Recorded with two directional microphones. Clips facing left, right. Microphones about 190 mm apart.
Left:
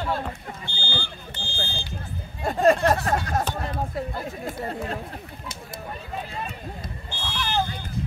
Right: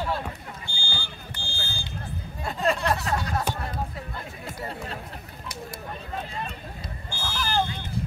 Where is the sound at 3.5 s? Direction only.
45° left (ahead or behind).